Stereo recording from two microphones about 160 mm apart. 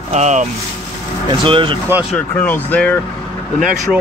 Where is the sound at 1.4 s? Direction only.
30° right (ahead or behind).